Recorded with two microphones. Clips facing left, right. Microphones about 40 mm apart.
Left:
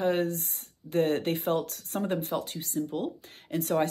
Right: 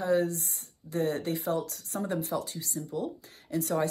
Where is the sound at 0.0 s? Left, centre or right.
Left.